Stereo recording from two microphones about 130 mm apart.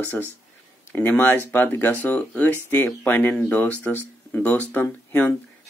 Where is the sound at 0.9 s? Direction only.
15° left (ahead or behind).